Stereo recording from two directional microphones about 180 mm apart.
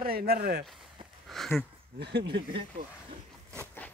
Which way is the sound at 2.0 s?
70° right (ahead or behind).